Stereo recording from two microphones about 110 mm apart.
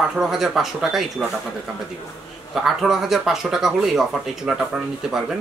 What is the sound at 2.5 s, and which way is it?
Speech, centre (ahead or behind).